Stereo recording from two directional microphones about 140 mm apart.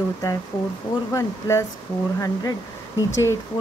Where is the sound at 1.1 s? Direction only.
20° left (ahead or behind).